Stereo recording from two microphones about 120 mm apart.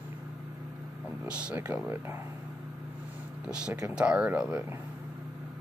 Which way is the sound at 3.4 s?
10° right (ahead or behind).